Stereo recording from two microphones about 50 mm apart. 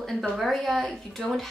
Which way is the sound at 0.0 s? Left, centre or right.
Centre.